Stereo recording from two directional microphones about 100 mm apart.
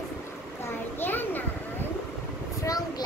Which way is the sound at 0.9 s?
20° left (ahead or behind).